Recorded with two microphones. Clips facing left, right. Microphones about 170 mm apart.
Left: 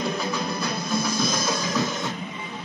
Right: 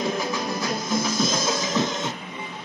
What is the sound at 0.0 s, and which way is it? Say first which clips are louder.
Music: right 1 dB; 20° right (ahead or behind).